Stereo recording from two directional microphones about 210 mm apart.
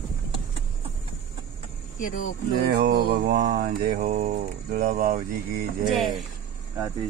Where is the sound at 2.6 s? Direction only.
50° right (ahead or behind).